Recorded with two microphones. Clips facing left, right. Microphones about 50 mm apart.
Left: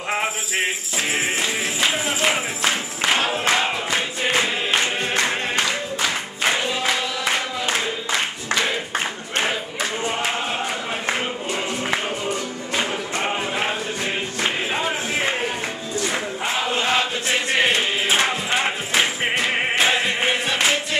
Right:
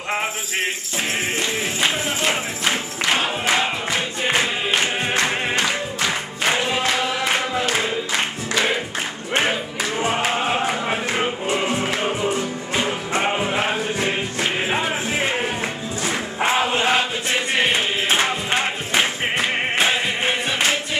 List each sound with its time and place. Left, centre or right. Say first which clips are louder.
0.1 s music: even; centre
1.9 s music: left 2 dB; centre
4.4 s choir: even; centre
5.0 s music: right 1 dB; centre
10.5 s a sound: right 4 dB; right
11.1 s music: right 3 dB; right
12.8 s music: right 5 dB; centre
16.5 s chant: right 2 dB; right
17.3 s music: left 1 dB; centre